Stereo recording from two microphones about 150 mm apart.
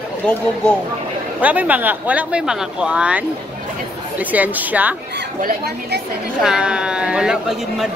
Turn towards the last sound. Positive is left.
turn(degrees=-5)  # may be behind; listen again after turning